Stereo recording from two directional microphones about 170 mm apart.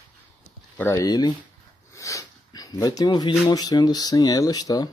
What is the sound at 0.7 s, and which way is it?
Speech, 15° left (ahead or behind).